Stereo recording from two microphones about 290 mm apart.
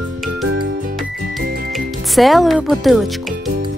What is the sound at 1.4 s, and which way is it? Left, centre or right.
Music, right.